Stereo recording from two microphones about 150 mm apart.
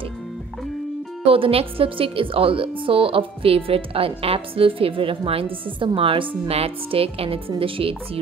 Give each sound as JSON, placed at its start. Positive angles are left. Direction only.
{"t": 1.2, "sound": "a woman's voice", "side_deg": -40}